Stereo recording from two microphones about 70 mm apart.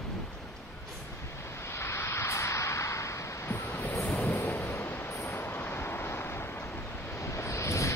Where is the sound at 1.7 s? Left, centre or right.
Left.